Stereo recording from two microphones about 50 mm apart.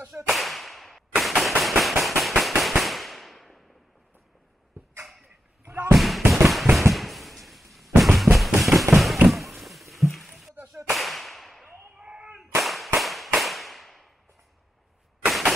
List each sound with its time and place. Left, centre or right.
0.1 s whip: centre
1.6 s firecracker: centre
5.7 s basketball bounce: right
5.9 s fireworks: centre
8.0 s drum: centre
8.5 s fireworks: centre
9.3 s a sound: centre
10.9 s whip: centre
11.6 s a sound: centre
12.6 s whip: centre
13.0 s firecracker: centre
15.2 s a sound: centre